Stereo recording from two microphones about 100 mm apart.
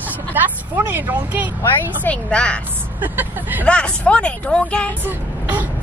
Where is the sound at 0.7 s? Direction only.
15° right (ahead or behind).